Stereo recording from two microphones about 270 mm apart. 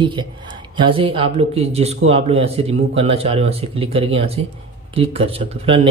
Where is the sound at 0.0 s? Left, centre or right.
Centre.